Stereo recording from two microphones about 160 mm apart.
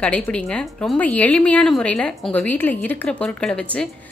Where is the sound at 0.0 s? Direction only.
5° left (ahead or behind).